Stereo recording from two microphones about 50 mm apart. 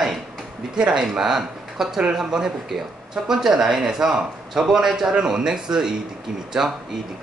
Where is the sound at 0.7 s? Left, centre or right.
Centre.